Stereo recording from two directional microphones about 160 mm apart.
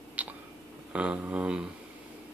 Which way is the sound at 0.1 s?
10° right (ahead or behind).